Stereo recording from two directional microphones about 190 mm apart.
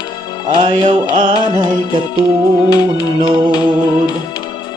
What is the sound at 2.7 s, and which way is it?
Music, 20° left (ahead or behind).